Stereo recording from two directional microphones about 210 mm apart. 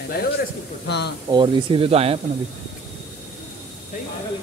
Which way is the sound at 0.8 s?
55° left (ahead or behind).